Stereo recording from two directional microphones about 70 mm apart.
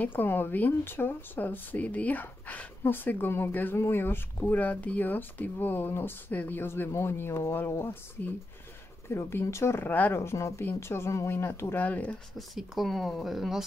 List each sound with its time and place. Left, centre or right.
0.0 s speech: left
12.4 s speech: centre